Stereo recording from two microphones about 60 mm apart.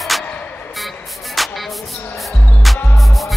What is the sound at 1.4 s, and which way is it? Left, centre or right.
Music, centre.